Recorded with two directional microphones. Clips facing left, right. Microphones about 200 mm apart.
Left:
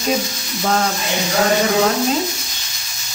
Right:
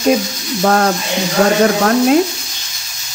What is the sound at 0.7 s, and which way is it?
Speech, 55° right (ahead or behind).